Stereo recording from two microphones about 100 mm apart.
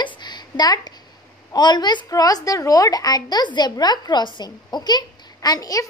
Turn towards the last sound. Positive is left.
turn(degrees=35)  # may be behind; listen again after turning